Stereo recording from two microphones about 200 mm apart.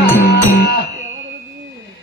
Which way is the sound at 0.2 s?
55° left (ahead or behind).